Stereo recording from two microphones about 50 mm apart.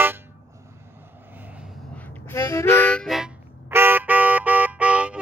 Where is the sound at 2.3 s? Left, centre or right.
Left.